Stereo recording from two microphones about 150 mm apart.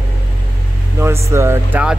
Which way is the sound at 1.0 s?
15° right (ahead or behind).